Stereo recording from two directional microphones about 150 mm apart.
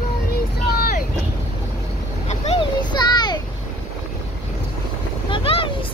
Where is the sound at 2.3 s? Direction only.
40° left (ahead or behind).